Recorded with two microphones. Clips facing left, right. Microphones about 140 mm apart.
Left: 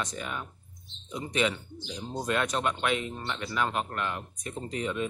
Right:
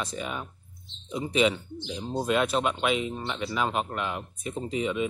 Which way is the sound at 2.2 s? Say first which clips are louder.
Right 3 dB; 10° right (ahead or behind).